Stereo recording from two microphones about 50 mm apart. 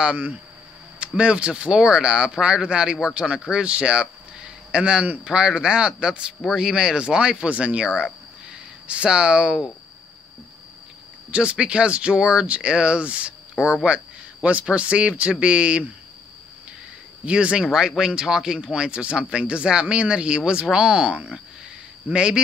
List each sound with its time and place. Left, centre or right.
0.9 s speech: right
8.5 s a sound: right
11.3 s speech: centre
17.2 s speech: right